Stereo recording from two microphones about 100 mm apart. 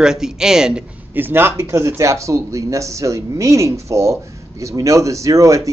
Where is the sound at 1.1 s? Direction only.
20° right (ahead or behind).